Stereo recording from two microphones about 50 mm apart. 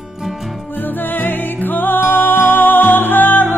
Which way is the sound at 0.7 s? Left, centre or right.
Left.